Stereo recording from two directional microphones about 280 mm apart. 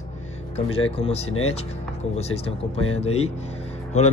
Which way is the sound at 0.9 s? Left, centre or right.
Left.